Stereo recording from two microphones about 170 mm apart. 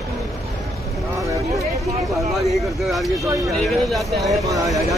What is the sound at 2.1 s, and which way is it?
Speech, centre (ahead or behind).